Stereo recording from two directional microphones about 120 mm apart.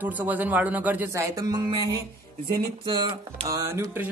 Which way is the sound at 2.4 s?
40° right (ahead or behind).